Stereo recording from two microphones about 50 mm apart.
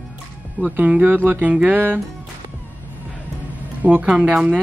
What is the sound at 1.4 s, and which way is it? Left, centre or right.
Speech, right.